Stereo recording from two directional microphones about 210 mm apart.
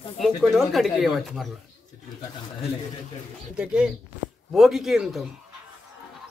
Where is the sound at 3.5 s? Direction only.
5° right (ahead or behind).